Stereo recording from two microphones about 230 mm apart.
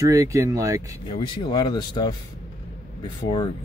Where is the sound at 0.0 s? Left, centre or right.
Centre.